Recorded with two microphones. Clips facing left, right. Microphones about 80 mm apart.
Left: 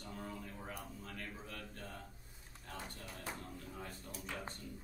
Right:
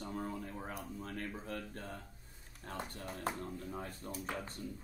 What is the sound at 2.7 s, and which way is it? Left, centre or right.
Speech, right.